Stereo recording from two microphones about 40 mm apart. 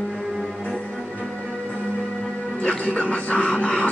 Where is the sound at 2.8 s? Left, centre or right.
Left.